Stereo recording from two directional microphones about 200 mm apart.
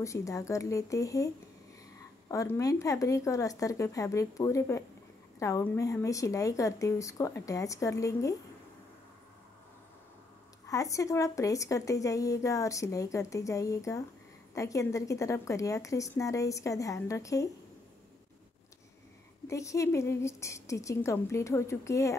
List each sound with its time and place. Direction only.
0.0 s speech: 15° left (ahead or behind)
10.7 s speech: 15° left (ahead or behind)
19.4 s speech: 15° left (ahead or behind)